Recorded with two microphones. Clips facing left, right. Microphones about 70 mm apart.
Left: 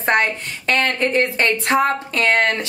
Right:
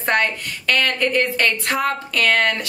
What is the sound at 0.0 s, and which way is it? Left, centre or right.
A woman's voice, left.